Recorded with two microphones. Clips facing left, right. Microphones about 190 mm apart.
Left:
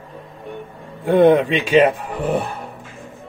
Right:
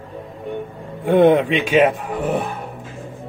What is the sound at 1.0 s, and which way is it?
Speech, 10° right (ahead or behind).